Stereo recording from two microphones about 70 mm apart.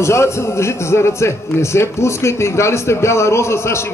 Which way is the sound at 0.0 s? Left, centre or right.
Left.